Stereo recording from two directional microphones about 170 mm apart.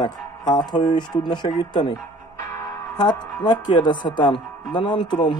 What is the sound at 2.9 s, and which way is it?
Speech, 25° left (ahead or behind).